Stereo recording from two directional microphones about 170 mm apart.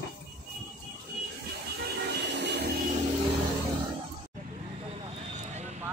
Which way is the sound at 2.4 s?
80° right.